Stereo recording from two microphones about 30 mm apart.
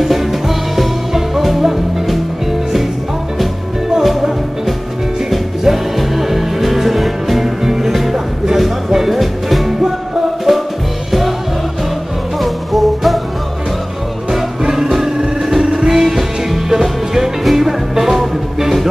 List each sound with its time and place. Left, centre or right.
0.0 s music: centre
4.0 s music: centre
12.4 s music: centre
14.6 s music: centre